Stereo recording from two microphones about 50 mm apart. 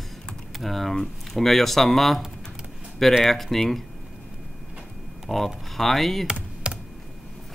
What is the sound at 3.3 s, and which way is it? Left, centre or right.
Speech, centre.